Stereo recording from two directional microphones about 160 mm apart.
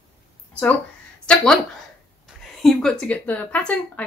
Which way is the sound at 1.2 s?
5° left (ahead or behind).